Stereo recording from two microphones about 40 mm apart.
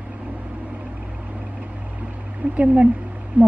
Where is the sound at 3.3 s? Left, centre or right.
Right.